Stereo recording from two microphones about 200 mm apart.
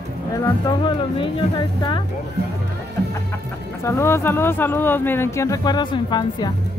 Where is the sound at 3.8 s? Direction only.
15° left (ahead or behind).